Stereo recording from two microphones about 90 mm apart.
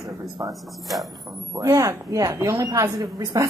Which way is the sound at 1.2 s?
40° right (ahead or behind).